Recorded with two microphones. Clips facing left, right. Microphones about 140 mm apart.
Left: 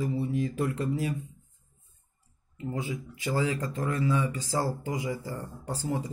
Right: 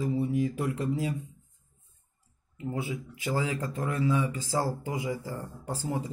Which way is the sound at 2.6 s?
10° right (ahead or behind).